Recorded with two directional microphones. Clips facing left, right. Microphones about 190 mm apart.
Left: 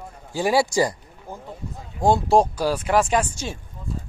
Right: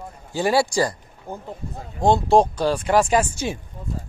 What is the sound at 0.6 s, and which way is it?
Speech, 20° left (ahead or behind).